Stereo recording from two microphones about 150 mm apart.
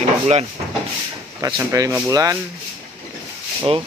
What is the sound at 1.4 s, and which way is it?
Speech, 20° right (ahead or behind).